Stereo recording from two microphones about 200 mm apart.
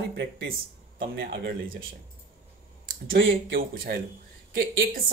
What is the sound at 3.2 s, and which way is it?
Speech, 65° right (ahead or behind).